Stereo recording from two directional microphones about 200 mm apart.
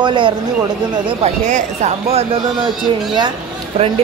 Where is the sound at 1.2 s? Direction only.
35° right (ahead or behind).